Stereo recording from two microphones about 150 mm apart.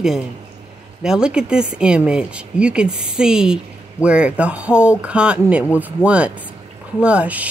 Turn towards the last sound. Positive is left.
turn(degrees=-10)  # may be behind; listen again after turning